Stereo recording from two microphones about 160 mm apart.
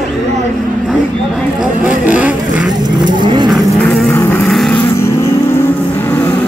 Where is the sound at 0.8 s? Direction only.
5° right (ahead or behind).